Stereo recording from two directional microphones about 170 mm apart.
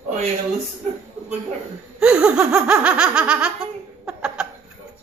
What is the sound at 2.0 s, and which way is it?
Laughter, 5° right (ahead or behind).